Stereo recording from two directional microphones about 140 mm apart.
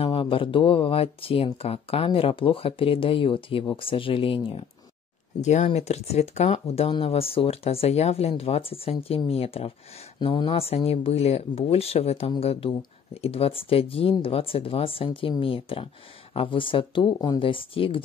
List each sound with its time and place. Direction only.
0.0 s speech: 40° left (ahead or behind)
5.4 s speech: 55° left (ahead or behind); by 18.0 s 40° left (ahead or behind)